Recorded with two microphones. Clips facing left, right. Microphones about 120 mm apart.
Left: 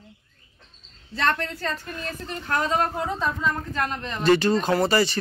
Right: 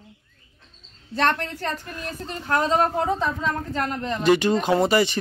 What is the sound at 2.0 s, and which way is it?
Speech, 20° right (ahead or behind).